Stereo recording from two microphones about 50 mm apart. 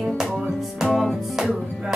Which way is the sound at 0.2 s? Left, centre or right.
Centre.